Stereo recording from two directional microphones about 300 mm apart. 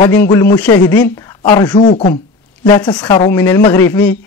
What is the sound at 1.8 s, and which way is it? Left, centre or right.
Speech, left.